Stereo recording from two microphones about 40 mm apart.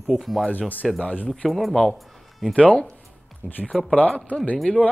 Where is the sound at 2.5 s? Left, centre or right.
Left.